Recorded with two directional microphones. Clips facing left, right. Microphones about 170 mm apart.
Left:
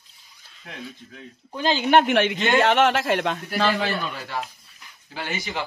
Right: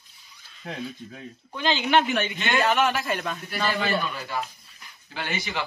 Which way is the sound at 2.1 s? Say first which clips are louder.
Left 6 dB; 85° left.